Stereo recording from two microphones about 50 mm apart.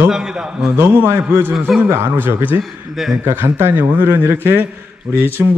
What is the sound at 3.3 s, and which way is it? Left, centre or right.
A man's voice, right.